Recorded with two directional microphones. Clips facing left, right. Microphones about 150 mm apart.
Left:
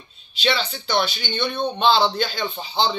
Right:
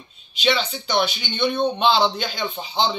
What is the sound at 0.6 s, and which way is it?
Speech, centre (ahead or behind).